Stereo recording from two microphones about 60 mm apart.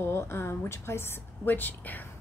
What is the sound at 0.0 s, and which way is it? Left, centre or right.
A woman's voice, left.